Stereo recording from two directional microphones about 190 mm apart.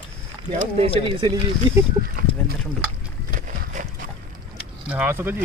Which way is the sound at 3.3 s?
45° right (ahead or behind).